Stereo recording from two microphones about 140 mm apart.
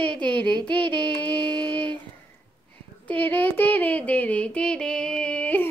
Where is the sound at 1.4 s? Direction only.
30° right (ahead or behind).